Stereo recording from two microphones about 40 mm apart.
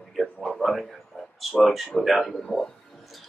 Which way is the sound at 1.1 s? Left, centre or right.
Left.